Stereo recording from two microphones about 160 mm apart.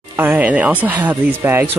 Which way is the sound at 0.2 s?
10° right (ahead or behind).